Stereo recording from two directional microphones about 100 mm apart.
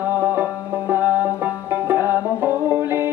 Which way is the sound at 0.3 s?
20° right (ahead or behind).